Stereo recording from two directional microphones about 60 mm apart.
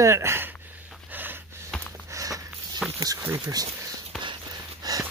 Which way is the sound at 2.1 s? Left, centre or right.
Right.